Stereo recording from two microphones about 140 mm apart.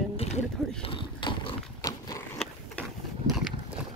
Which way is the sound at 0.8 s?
40° left (ahead or behind).